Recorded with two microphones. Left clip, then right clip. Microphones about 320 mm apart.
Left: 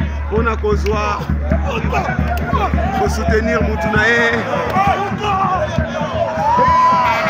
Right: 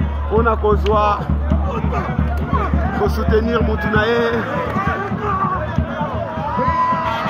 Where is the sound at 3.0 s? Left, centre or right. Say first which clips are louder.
Right 1 dB; centre.